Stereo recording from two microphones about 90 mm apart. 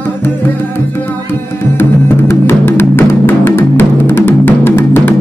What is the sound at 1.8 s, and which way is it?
Music, 25° left (ahead or behind).